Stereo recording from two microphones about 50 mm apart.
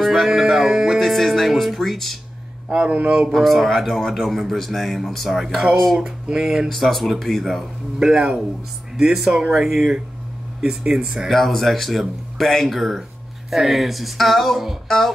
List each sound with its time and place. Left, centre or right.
0.0 s music: centre
2.7 s speech: right
3.3 s a man's voice: centre
6.7 s a man's voice: centre
8.0 s speech: centre
11.2 s a man's voice: centre